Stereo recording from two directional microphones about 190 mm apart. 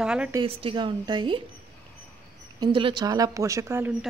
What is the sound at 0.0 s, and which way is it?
Speech, 5° right (ahead or behind).